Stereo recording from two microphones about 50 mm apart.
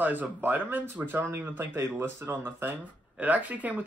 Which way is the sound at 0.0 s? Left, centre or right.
Right.